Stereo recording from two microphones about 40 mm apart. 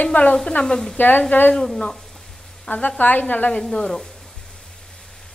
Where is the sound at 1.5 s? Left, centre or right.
Centre.